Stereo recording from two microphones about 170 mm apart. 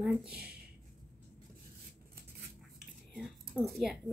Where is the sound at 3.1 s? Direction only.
Centre (ahead or behind).